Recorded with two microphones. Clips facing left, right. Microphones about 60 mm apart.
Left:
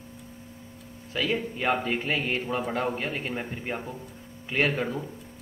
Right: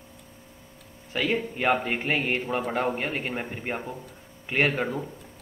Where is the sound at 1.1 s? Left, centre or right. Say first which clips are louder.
Right 1 dB; right.